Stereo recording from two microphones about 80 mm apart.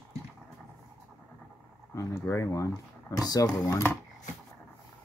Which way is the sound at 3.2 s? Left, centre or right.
Left.